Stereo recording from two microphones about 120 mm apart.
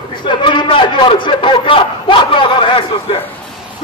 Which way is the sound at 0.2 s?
45° left (ahead or behind).